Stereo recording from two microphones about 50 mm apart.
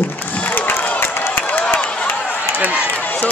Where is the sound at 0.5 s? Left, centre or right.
Left.